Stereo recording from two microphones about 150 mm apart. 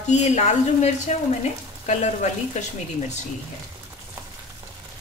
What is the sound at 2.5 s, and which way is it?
Speech, 50° left (ahead or behind).